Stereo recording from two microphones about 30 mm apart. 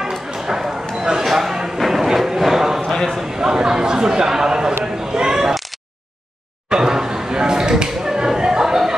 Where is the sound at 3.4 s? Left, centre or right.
Right.